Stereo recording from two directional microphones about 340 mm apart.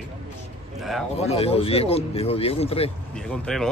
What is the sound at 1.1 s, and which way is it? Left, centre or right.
Speech, centre.